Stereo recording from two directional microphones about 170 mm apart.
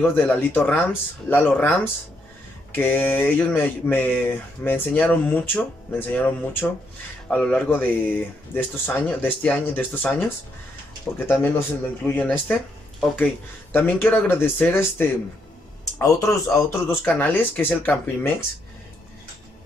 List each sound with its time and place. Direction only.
0.0 s speech: 10° left (ahead or behind)